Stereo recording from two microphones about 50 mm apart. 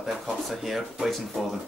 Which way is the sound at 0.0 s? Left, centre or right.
Centre.